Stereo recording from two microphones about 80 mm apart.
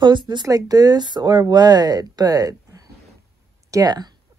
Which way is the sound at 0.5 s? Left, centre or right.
Right.